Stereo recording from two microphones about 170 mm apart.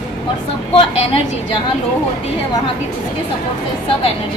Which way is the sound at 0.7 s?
35° left (ahead or behind).